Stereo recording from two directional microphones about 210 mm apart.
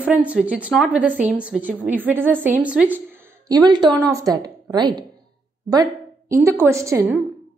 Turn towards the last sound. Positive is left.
turn(degrees=-10)  # may be behind; listen again after turning